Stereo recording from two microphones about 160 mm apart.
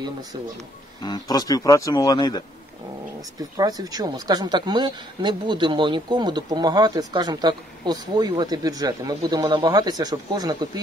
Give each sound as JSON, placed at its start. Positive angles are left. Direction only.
{"t": 1.0, "sound": "speech", "side_deg": 25}
{"t": 3.3, "sound": "speech", "side_deg": -25}